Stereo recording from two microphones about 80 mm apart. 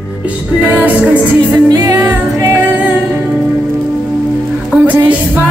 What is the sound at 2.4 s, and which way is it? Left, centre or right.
Music, right.